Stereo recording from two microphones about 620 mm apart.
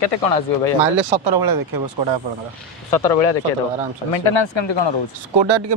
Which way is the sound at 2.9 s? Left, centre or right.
Left.